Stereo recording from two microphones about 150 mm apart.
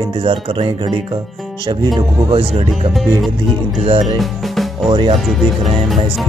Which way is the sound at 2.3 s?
40° right (ahead or behind).